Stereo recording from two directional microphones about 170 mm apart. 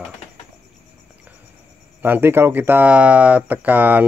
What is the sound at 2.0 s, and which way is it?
Speech, 10° right (ahead or behind).